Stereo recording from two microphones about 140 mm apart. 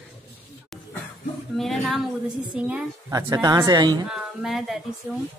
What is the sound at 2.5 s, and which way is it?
Speech, 10° right (ahead or behind).